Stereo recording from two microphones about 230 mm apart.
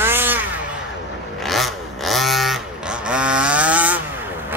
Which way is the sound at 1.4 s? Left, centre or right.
Centre.